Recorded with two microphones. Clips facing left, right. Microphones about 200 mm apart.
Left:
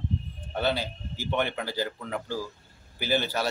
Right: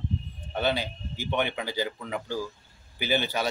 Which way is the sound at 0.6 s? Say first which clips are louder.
Even; 5° left (ahead or behind).